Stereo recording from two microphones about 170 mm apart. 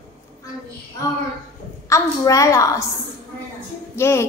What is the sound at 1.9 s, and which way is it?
Speech, 20° left (ahead or behind).